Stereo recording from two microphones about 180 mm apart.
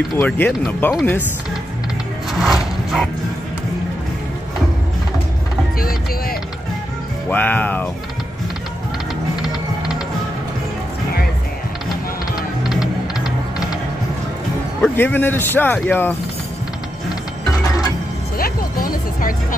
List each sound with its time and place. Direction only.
0.2 s speech: 10° left (ahead or behind)
2.3 s music: centre (ahead or behind)
5.8 s vehicle: 55° left (ahead or behind)
7.2 s speech: 10° left (ahead or behind)
12.6 s music: 5° right (ahead or behind)
14.8 s speech: 10° left (ahead or behind)
18.4 s music: 50° left (ahead or behind)